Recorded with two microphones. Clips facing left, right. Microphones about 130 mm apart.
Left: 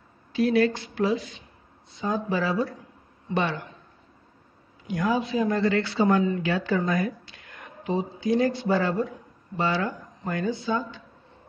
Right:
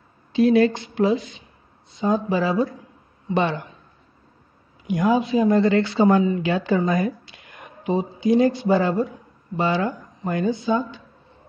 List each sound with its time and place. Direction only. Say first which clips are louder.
0.3 s speech: right 5 dB; 25° right (ahead or behind)
4.8 s speech: right 5 dB; 20° right (ahead or behind)